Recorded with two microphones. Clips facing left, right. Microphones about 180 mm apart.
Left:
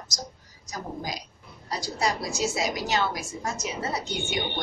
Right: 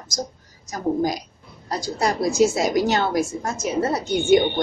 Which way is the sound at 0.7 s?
50° right (ahead or behind).